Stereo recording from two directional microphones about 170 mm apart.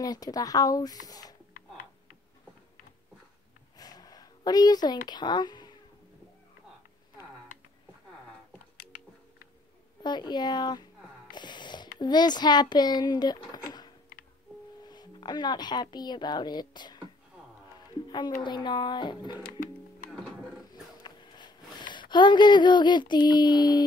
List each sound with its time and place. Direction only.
0.0 s speech: 20° left (ahead or behind)
3.7 s a sound: 25° left (ahead or behind)
5.0 s speech: 25° left (ahead or behind)
10.0 s speech: 25° left (ahead or behind)
11.3 s a sound: 25° left (ahead or behind)
12.0 s speech: 25° left (ahead or behind)
14.8 s speech: 25° left (ahead or behind)
17.7 s music: 25° left (ahead or behind)
18.4 s speech: 25° left (ahead or behind)
21.0 s a sound: 25° left (ahead or behind)
22.1 s speech: 25° left (ahead or behind)